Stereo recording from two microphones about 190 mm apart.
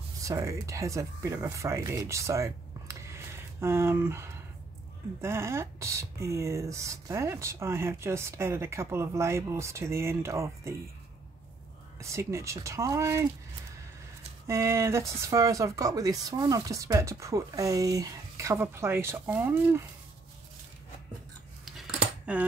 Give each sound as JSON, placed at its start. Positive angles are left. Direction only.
{"t": 0.2, "sound": "speech", "side_deg": -15}
{"t": 12.0, "sound": "speech", "side_deg": -15}
{"t": 14.5, "sound": "speech", "side_deg": -15}
{"t": 21.6, "sound": "coin", "side_deg": 0}